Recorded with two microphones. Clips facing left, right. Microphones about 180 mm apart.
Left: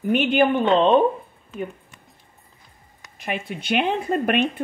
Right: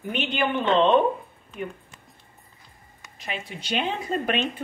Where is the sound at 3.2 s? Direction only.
55° left (ahead or behind).